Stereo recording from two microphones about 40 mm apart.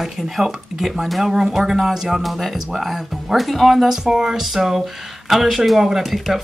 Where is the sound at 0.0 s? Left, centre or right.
Centre.